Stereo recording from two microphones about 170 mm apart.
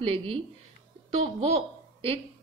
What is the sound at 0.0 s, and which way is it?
A woman's voice, 35° right (ahead or behind).